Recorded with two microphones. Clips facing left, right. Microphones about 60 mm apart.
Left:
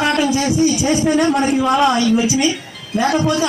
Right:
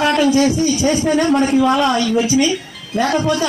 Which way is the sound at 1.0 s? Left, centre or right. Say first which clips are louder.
Left 1 dB; centre.